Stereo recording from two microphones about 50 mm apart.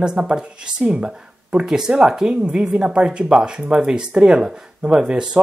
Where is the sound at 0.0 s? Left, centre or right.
Centre.